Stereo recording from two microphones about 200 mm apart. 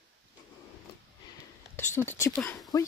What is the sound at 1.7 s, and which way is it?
Speech, 10° left (ahead or behind).